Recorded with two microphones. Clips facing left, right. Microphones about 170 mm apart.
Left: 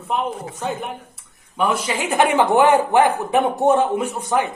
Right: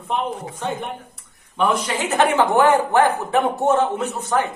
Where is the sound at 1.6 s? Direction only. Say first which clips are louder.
Even; 10° left (ahead or behind).